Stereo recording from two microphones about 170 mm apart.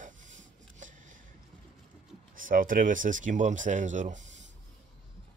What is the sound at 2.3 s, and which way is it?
Speech, 55° right (ahead or behind).